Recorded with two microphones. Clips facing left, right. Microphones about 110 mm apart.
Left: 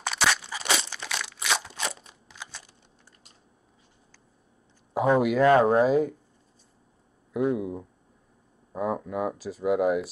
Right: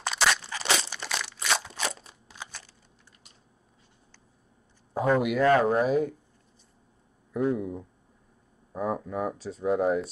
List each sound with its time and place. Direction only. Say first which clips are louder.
0.0 s crunch: even; centre (ahead or behind)
0.8 s crushing: even; centre (ahead or behind)
2.0 s crunch: right 1 dB; centre (ahead or behind)
4.9 s speech: left 2 dB; 15° left (ahead or behind)
7.3 s speech: left 1 dB; 10° left (ahead or behind)